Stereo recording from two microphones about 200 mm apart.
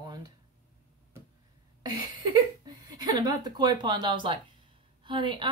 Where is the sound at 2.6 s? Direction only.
20° right (ahead or behind).